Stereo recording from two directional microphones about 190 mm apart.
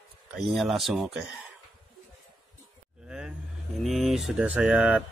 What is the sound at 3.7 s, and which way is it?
Speech, centre (ahead or behind).